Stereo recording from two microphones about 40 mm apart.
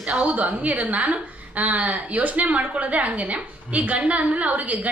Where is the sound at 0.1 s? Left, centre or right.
Right.